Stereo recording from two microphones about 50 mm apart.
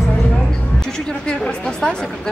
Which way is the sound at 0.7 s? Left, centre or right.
Centre.